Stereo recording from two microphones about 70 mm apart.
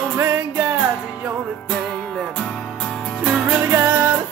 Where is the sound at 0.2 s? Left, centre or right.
Right.